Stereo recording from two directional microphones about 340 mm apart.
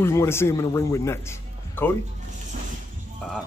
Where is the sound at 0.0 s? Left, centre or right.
Centre.